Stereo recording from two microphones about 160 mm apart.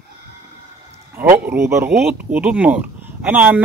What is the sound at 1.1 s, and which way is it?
Speech, 15° right (ahead or behind).